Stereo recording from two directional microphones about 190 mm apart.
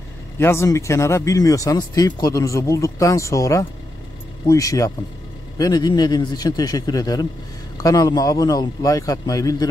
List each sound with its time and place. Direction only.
0.4 s a man's voice: 15° left (ahead or behind)